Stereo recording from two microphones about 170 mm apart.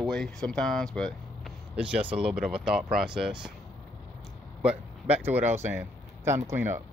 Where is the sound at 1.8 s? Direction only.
5° right (ahead or behind).